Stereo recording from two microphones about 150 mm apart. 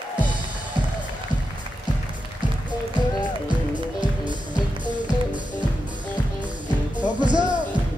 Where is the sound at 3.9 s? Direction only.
30° right (ahead or behind).